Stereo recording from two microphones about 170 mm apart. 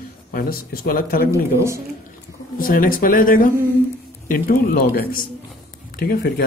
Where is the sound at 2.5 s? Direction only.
55° left (ahead or behind).